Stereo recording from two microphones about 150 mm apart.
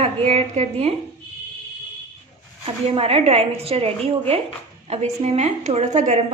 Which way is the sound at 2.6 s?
40° right (ahead or behind).